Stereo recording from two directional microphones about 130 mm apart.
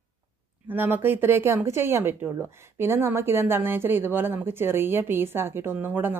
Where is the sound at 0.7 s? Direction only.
15° right (ahead or behind).